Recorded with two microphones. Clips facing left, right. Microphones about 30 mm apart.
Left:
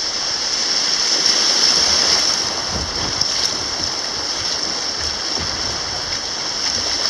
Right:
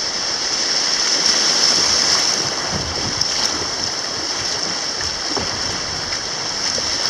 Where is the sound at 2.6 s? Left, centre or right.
Centre.